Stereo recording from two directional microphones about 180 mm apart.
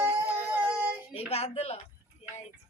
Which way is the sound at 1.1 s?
35° left (ahead or behind).